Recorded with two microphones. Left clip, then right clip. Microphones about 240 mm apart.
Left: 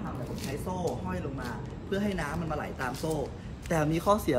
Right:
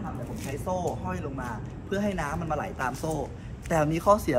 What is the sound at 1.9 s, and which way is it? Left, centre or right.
Speech, centre.